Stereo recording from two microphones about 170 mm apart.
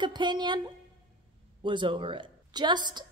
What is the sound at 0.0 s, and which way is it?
A woman's voice, 25° right (ahead or behind).